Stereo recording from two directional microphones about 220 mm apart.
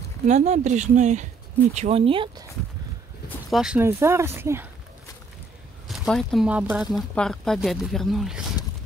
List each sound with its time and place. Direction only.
0.3 s speech: 30° right (ahead or behind)
3.4 s speech: centre (ahead or behind)
5.9 s speech: centre (ahead or behind)